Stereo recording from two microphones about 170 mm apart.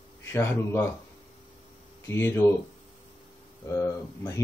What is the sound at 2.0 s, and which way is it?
Speech, 15° left (ahead or behind).